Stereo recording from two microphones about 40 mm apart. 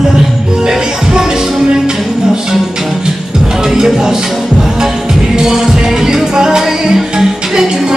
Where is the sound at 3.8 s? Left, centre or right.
Centre.